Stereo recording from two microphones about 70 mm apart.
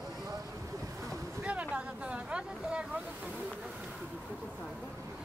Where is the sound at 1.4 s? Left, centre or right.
Centre.